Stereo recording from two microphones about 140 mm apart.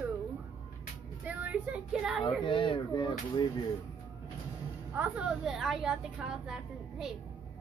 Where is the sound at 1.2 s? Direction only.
10° right (ahead or behind).